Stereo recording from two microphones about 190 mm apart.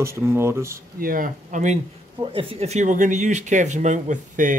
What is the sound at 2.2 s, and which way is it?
Speech, 30° right (ahead or behind).